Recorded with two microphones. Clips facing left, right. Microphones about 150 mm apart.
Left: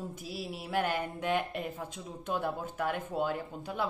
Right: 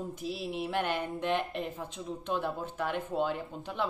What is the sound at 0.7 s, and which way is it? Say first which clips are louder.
Speech: left 2 dB; 45° left (ahead or behind).